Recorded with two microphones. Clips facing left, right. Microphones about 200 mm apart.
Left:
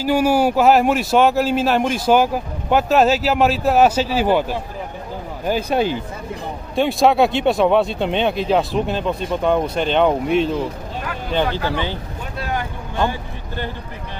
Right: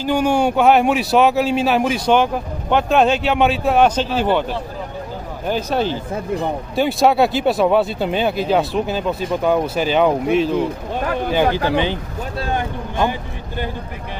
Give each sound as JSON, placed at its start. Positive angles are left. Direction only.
{"t": 0.0, "sound": "a man's voice", "side_deg": 5}
{"t": 6.7, "sound": "a man's voice", "side_deg": 0}
{"t": 11.5, "sound": "speech", "side_deg": -15}
{"t": 12.4, "sound": "vehicle", "side_deg": -30}